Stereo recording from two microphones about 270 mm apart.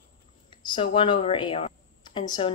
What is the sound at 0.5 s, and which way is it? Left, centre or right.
Speech, centre.